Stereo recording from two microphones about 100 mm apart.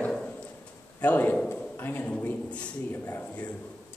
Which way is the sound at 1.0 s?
15° left (ahead or behind).